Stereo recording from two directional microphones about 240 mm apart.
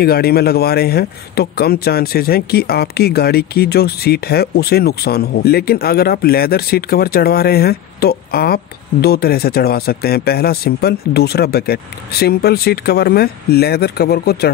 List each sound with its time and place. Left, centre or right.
0.0 s speech: left